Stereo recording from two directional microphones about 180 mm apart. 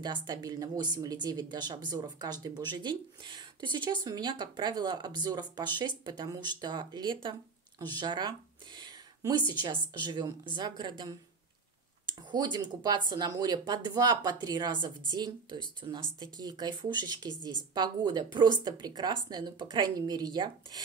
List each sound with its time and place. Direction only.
0.0 s speech: 25° right (ahead or behind)